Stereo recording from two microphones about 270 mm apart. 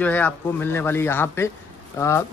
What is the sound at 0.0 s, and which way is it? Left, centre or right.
Speech, centre.